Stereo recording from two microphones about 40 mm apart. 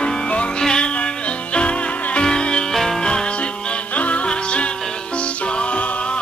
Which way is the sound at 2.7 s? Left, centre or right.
Centre.